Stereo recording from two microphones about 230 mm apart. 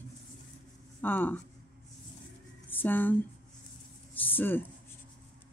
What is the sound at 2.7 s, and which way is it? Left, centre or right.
Speech, centre.